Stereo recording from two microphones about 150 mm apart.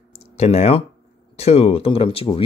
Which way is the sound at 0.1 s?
40° left (ahead or behind).